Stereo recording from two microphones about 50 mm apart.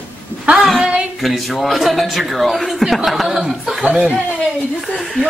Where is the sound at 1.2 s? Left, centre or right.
Centre.